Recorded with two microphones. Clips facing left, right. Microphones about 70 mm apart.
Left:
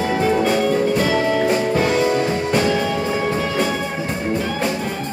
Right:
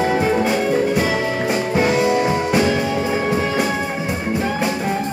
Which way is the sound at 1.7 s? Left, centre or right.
Centre.